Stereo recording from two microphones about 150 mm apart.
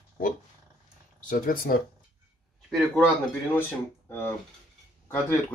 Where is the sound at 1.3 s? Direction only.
65° left (ahead or behind).